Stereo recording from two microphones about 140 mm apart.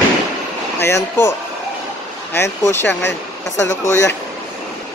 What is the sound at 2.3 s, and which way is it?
Speech, 20° left (ahead or behind).